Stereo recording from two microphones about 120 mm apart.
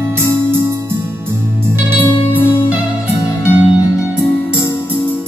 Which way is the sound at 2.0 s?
15° left (ahead or behind).